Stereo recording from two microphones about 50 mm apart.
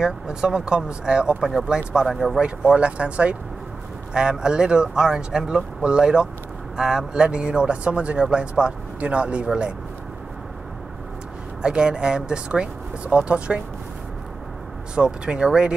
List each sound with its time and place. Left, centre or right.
0.0 s speech: centre
2.0 s speech: centre
2.7 s speech: right
11.6 s speech: centre
15.0 s speech: centre